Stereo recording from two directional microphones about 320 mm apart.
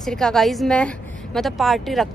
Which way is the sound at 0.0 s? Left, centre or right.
Centre.